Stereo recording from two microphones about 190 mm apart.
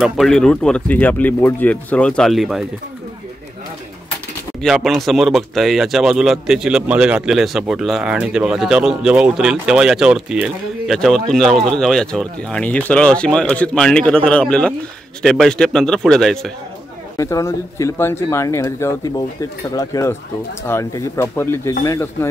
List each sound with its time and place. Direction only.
0.0 s speech: centre (ahead or behind)
4.6 s speech: centre (ahead or behind)
17.2 s speech: 15° left (ahead or behind)